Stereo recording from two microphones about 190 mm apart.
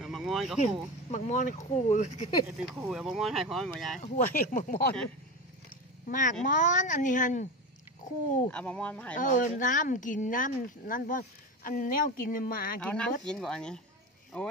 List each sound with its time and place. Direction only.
0.0 s a sound: centre (ahead or behind)
1.1 s speech: 40° left (ahead or behind)
2.4 s speech: 10° right (ahead or behind)
4.0 s speech: 45° left (ahead or behind)
6.0 s a child's voice: 45° left (ahead or behind)
8.5 s speech: 5° left (ahead or behind)
9.1 s speech: 45° left (ahead or behind)
12.8 s speech: 5° left (ahead or behind)